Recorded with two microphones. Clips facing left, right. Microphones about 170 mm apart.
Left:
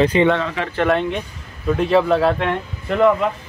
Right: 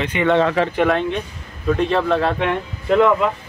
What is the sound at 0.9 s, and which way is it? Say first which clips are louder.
Speech: even; centre (ahead or behind).